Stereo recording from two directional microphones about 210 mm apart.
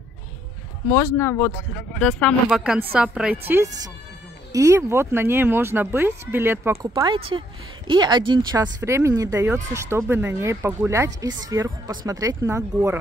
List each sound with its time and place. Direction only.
0.8 s a woman's voice: 15° left (ahead or behind); by 12.9 s 15° right (ahead or behind)